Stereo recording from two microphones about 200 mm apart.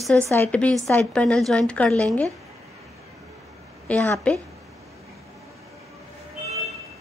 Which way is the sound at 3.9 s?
5° left (ahead or behind).